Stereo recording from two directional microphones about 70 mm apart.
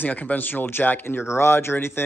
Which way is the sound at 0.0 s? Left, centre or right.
Left.